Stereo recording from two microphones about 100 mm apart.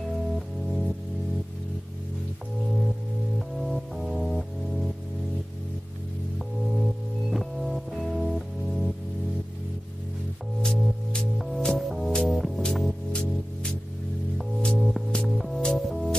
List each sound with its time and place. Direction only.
0.7 s music: centre (ahead or behind)
3.3 s music: centre (ahead or behind)
6.3 s music: centre (ahead or behind)
10.6 s music: 5° left (ahead or behind)